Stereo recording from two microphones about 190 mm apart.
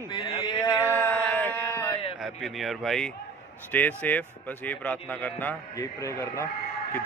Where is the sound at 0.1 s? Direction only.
25° left (ahead or behind).